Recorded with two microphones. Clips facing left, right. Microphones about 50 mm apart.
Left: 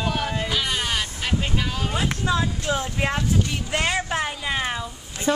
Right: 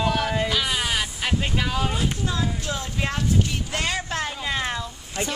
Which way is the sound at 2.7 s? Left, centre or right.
Left.